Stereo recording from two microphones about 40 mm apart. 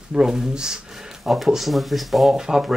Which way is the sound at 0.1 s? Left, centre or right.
Centre.